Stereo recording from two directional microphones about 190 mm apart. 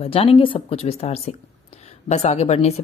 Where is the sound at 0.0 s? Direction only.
30° left (ahead or behind).